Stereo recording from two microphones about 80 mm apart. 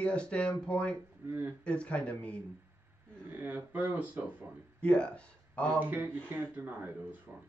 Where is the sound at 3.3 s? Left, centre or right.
Right.